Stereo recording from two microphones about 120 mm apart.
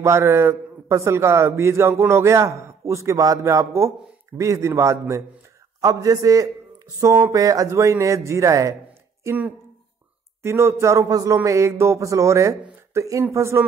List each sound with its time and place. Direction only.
0.0 s a man's voice: 20° right (ahead or behind)